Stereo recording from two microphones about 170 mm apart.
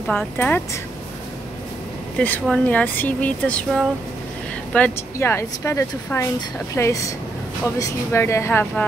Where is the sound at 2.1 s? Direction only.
10° left (ahead or behind).